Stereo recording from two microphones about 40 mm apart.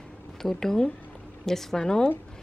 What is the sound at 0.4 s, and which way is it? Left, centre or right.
Speech, centre.